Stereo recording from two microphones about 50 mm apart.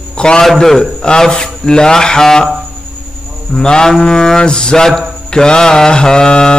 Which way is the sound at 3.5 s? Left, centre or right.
Centre.